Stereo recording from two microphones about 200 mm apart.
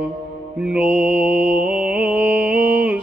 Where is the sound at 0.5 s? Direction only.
5° right (ahead or behind).